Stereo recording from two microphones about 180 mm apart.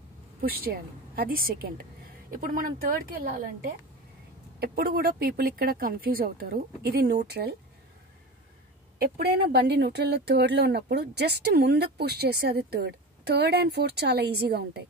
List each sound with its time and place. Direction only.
0.4 s speech: 55° right (ahead or behind)
8.9 s speech: 55° right (ahead or behind)